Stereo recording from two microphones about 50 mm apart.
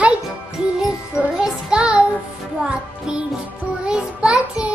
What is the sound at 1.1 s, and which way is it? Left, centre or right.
Music, centre.